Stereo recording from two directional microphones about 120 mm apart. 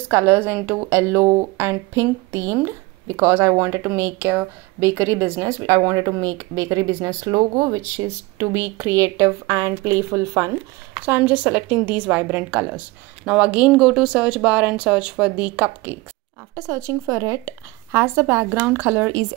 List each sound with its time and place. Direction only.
0.1 s speech: 20° right (ahead or behind)
11.1 s a woman's voice: 15° right (ahead or behind)
16.5 s speech: 25° right (ahead or behind)